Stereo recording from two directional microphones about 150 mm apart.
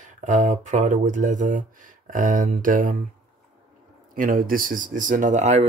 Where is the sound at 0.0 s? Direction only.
55° right (ahead or behind).